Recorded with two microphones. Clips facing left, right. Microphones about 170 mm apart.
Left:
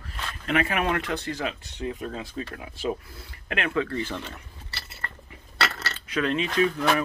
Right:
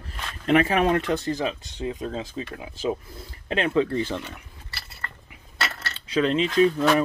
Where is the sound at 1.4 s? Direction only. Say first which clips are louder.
Right 3 dB; 25° right (ahead or behind).